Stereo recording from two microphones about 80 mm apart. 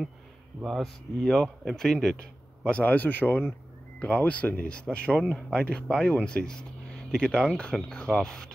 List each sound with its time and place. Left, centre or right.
0.7 s speech: centre